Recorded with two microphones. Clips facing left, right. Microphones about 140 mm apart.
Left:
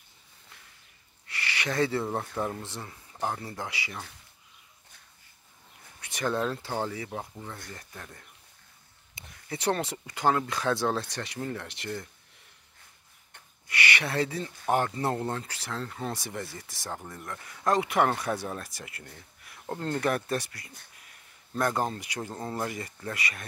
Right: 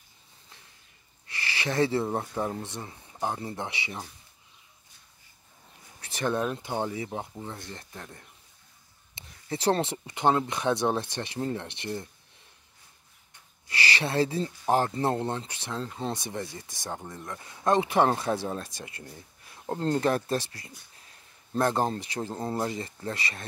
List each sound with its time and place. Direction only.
1.2 s speech: 25° right (ahead or behind)
5.9 s speech: 25° right (ahead or behind)
13.7 s speech: 30° right (ahead or behind)